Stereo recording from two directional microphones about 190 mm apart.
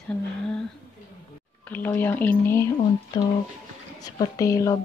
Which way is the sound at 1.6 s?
10° left (ahead or behind).